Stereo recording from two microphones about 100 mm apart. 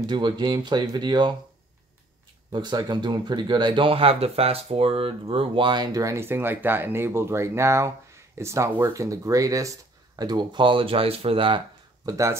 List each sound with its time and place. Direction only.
0.0 s speech: 50° right (ahead or behind)
2.5 s speech: 45° right (ahead or behind)
5.9 s speech: 30° right (ahead or behind); by 11.6 s 60° right (ahead or behind)
12.1 s speech: 30° right (ahead or behind)